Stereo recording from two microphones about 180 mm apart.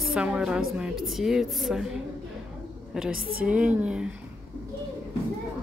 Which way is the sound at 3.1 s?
55° right (ahead or behind).